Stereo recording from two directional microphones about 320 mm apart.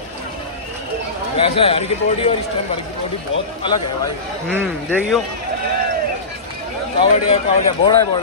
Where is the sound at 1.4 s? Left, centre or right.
Centre.